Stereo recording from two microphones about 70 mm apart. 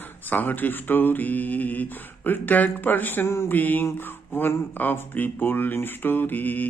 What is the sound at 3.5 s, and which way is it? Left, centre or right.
Speech, left.